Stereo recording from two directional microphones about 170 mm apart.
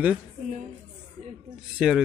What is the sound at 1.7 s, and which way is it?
Speech, 5° right (ahead or behind).